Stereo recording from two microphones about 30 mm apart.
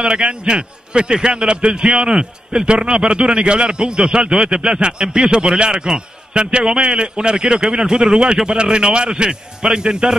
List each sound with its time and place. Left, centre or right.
0.0 s a man's voice: right